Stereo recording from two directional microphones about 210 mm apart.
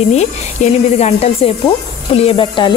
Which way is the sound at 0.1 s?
30° left (ahead or behind).